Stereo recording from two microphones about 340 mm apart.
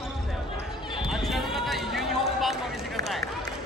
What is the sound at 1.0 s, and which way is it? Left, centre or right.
Clip-clop, centre.